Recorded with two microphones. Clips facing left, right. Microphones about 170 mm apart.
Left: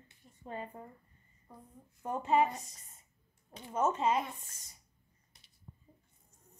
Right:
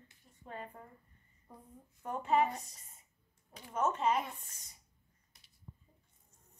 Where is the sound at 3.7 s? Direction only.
5° left (ahead or behind).